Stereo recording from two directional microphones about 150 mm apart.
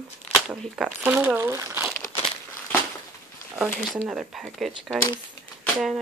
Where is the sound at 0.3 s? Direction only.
5° right (ahead or behind); by 1.9 s 20° right (ahead or behind).